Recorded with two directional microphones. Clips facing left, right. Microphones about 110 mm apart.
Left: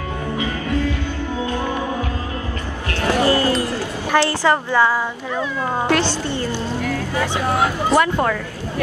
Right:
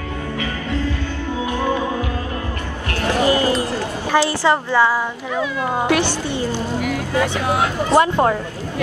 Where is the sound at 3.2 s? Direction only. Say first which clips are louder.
Right 1 dB; 20° right (ahead or behind).